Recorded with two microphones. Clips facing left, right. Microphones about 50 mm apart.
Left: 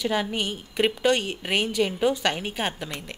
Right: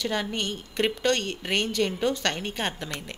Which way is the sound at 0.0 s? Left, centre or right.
Centre.